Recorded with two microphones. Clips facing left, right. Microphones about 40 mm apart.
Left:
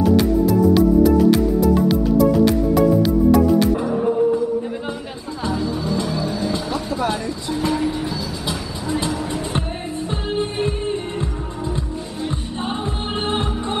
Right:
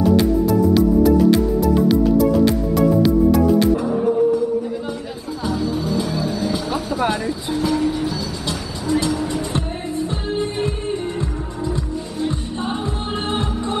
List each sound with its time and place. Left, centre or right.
0.5 s music: centre
3.9 s music: centre
5.4 s music: centre
7.0 s music: centre
7.6 s vehicle: centre
9.3 s music: left